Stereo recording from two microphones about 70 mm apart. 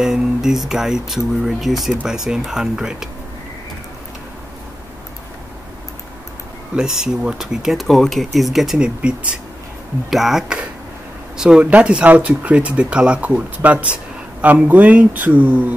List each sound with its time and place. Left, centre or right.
0.0 s speech: centre
6.7 s speech: centre
8.7 s speech: centre
10.0 s speech: centre; by 15.7 s right